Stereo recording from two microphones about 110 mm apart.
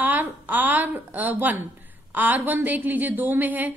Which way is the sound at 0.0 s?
15° right (ahead or behind).